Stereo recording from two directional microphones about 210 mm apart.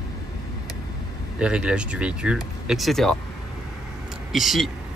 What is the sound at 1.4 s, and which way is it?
Speech, 5° right (ahead or behind).